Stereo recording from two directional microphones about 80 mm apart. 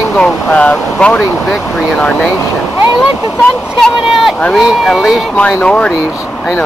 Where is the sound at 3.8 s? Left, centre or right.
Centre.